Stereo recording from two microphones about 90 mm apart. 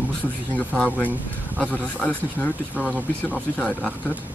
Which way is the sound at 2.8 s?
15° right (ahead or behind).